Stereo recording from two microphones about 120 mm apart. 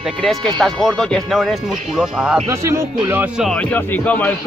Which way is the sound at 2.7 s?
20° right (ahead or behind).